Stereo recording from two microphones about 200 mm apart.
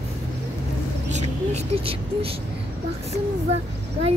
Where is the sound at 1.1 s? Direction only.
30° right (ahead or behind).